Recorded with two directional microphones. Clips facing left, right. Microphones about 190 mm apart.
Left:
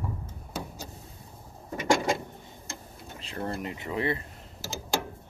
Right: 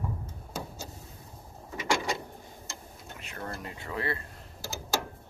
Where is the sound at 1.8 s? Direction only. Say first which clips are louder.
Left 5 dB; 50° left (ahead or behind).